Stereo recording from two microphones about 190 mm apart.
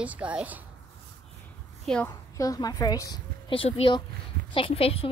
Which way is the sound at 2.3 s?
20° left (ahead or behind).